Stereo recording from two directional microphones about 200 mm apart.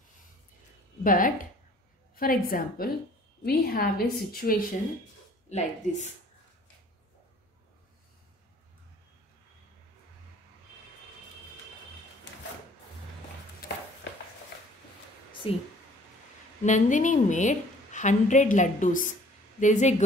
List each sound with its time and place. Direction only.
1.0 s a woman's voice: 40° left (ahead or behind)
13.6 s music: 45° left (ahead or behind)
15.4 s speech: 25° left (ahead or behind)
16.6 s a woman's voice: 40° left (ahead or behind)